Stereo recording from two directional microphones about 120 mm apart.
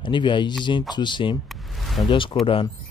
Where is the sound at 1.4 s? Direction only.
Centre (ahead or behind).